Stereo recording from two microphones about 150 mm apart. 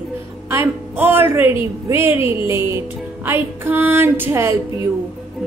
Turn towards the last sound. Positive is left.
turn(degrees=-15)  # may be behind; listen again after turning